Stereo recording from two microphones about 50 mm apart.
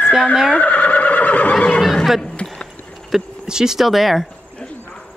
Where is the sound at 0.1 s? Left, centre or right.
Centre.